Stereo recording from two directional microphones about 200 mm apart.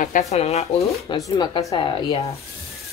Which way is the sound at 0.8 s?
15° left (ahead or behind).